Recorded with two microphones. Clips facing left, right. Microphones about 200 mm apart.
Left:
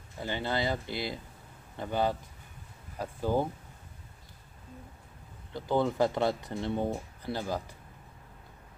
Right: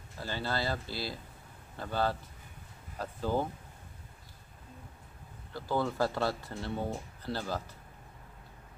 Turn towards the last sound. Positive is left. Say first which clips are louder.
# left 2 dB
turn(degrees=15)  # may be behind; listen again after turning